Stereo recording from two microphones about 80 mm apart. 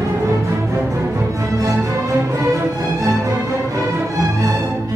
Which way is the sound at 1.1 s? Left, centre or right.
Right.